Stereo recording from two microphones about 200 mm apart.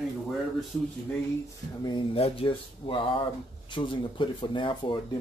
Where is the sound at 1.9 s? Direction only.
25° left (ahead or behind).